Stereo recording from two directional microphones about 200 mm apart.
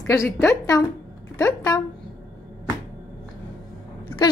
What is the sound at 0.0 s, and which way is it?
A woman's voice, 10° left (ahead or behind).